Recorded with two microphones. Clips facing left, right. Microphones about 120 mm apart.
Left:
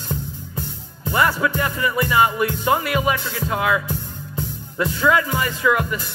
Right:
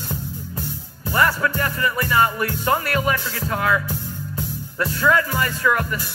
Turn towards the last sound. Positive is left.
turn(degrees=15)  # may be behind; listen again after turning